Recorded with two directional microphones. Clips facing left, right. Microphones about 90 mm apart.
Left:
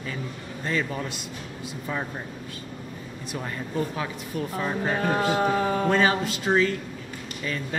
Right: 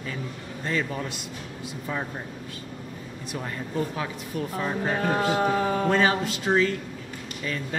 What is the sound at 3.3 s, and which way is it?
Speech, 20° left (ahead or behind).